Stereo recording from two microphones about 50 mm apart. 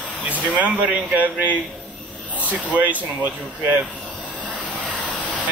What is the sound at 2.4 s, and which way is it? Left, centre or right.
Speech, right.